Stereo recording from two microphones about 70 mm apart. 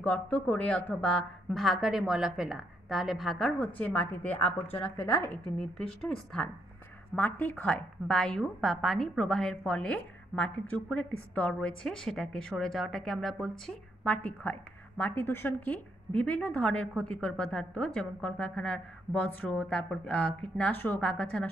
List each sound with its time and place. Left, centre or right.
0.0 s a woman's voice: centre
1.5 s a woman's voice: centre
3.5 s a woman's voice: centre
5.4 s a woman's voice: centre
7.2 s a woman's voice: left
11.8 s a woman's voice: centre
14.0 s a woman's voice: left
20.7 s a woman's voice: left
21.0 s a woman's voice: centre